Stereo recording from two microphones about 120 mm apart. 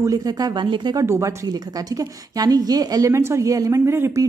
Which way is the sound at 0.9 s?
25° right (ahead or behind).